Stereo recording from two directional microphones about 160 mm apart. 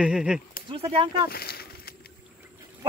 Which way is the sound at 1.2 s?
75° left (ahead or behind).